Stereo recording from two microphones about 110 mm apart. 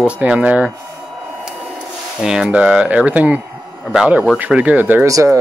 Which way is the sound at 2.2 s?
5° right (ahead or behind).